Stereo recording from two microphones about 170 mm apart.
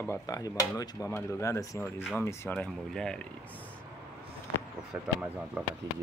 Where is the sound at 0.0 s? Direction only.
15° left (ahead or behind).